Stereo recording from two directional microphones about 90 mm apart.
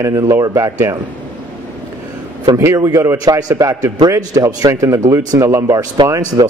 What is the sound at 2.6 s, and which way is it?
Speech, 30° right (ahead or behind).